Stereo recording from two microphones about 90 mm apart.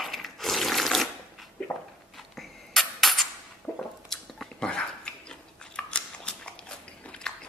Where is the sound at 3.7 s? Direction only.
20° left (ahead or behind).